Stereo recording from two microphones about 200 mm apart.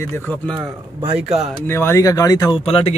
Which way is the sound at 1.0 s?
30° right (ahead or behind).